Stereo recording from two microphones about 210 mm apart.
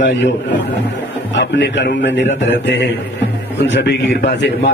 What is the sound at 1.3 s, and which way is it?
A man's voice, 55° left (ahead or behind).